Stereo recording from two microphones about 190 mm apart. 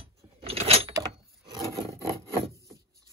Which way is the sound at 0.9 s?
25° right (ahead or behind).